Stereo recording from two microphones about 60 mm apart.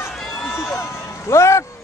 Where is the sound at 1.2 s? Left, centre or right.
Left.